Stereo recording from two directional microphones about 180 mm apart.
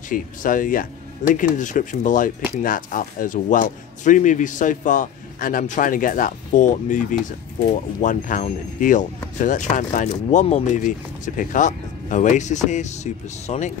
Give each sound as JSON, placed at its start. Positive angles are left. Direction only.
{"t": 0.1, "sound": "speech", "side_deg": 50}